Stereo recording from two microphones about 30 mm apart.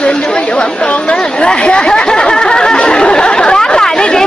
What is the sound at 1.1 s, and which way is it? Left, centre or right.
Speech, left.